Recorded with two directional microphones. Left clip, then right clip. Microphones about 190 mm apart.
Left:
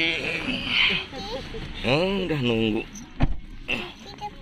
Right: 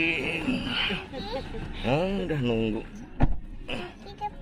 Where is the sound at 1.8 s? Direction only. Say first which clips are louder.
Left 4 dB; 5° left (ahead or behind).